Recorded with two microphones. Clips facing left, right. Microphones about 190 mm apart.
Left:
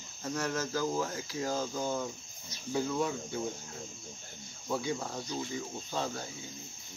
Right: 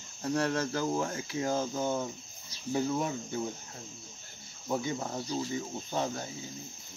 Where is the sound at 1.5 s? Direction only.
20° right (ahead or behind).